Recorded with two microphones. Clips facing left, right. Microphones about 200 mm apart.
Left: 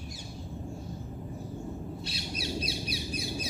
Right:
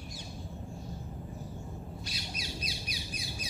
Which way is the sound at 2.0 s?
30° left (ahead or behind).